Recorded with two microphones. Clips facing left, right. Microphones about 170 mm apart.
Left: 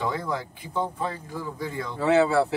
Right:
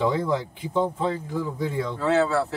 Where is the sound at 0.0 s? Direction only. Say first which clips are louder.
Right 5 dB; 20° right (ahead or behind).